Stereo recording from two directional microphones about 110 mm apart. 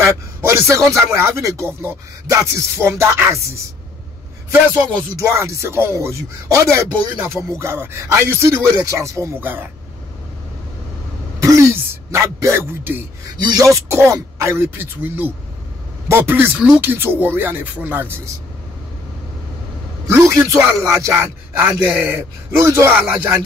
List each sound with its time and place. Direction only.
0.0 s speech: 25° right (ahead or behind)
5.1 s speech: 25° right (ahead or behind)
11.3 s speech: 30° right (ahead or behind)
13.4 s speech: 40° right (ahead or behind)
13.7 s speech: 25° right (ahead or behind)
20.1 s a man's voice: 25° right (ahead or behind)